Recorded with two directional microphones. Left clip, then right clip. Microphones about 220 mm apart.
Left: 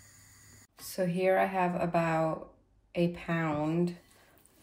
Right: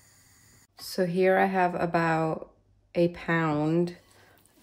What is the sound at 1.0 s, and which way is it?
Speech, 30° right (ahead or behind).